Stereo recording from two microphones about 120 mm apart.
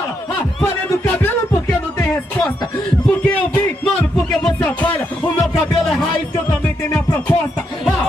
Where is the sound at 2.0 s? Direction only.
25° left (ahead or behind).